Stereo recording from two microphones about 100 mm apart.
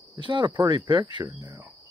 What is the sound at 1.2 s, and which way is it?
Insect, 35° right (ahead or behind).